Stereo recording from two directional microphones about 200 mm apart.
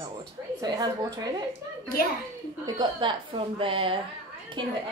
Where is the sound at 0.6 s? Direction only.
20° right (ahead or behind).